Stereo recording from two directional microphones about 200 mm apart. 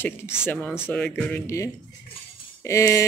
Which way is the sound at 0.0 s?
10° left (ahead or behind).